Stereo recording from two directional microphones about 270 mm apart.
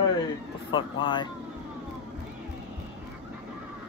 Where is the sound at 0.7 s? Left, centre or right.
Centre.